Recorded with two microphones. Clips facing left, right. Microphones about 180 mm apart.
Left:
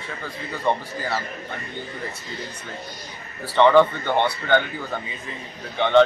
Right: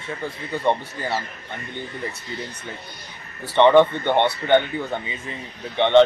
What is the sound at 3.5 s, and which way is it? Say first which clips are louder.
Speech: right 1 dB; 20° right (ahead or behind).